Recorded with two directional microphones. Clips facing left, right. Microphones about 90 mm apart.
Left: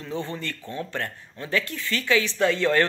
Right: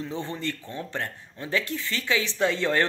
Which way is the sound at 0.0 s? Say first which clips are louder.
Even; 20° right (ahead or behind).